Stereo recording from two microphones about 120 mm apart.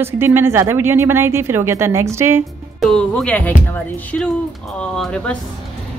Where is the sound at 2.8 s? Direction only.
5° left (ahead or behind).